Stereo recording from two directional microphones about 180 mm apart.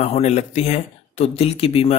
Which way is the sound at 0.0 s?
40° left (ahead or behind).